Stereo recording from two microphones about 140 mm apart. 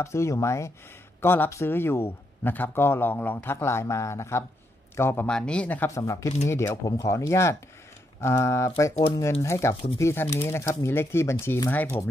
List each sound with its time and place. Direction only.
0.0 s speech: 20° left (ahead or behind)
5.9 s speech: 20° left (ahead or behind)